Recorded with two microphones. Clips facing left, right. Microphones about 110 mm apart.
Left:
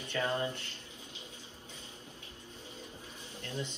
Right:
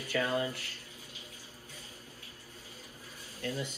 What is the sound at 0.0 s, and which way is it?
Speech, 25° left (ahead or behind).